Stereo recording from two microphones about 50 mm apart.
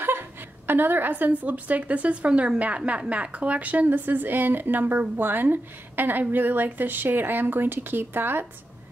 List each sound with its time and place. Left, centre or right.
0.0 s a woman's voice: right